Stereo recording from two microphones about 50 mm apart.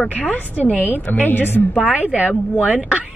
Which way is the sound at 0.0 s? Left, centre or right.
Left.